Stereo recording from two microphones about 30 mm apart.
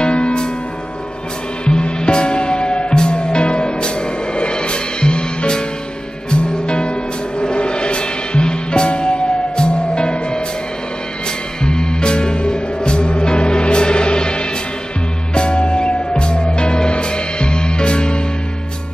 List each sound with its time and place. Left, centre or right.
0.0 s music: left
1.7 s music: left
11.6 s music: left